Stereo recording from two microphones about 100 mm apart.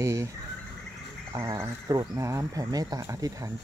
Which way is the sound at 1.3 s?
30° right (ahead or behind).